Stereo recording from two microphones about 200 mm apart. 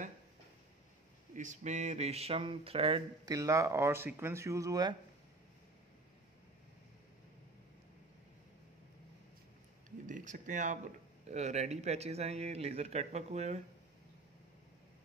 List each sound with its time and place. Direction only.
1.3 s speech: 40° right (ahead or behind)
3.3 s speech: 15° right (ahead or behind)
9.8 s a sound: 40° right (ahead or behind)
11.2 s speech: 35° right (ahead or behind)